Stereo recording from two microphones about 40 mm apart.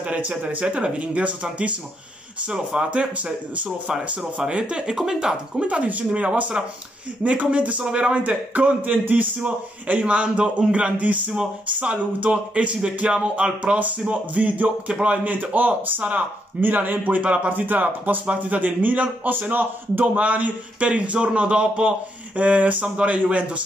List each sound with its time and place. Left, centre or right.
0.0 s speech: right
2.4 s speech: right
4.2 s speech: right
4.9 s speech: centre
5.6 s speech: right
20.2 s speech: right